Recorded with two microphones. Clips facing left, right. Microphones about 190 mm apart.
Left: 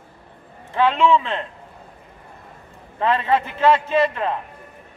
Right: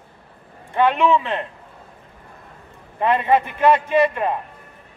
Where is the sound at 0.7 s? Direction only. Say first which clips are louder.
Even; 15° right (ahead or behind).